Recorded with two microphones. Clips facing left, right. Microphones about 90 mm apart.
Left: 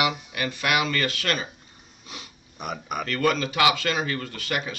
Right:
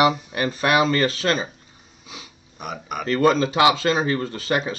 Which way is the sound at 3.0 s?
30° right (ahead or behind).